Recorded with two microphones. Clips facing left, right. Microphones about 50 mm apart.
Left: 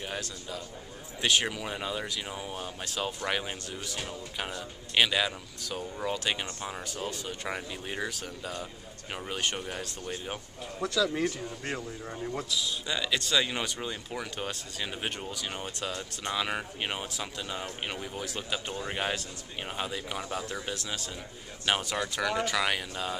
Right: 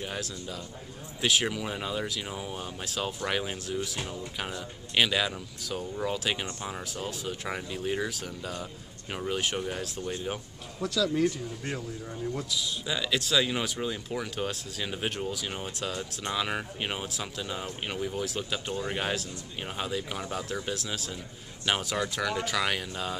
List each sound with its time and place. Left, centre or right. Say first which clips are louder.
0.0 s speech: right 1 dB; centre
11.1 s speech: right 3 dB; left
12.4 s speech: even; centre